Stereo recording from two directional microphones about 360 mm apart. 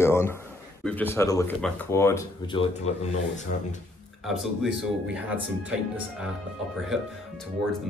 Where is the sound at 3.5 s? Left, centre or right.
Left.